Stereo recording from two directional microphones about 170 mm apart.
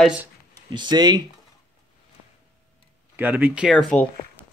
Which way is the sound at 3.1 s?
10° right (ahead or behind).